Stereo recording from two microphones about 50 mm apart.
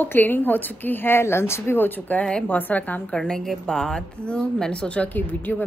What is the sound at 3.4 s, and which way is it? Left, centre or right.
A woman's voice, centre.